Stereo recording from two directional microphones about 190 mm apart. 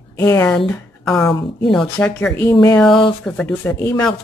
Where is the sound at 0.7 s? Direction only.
5° left (ahead or behind).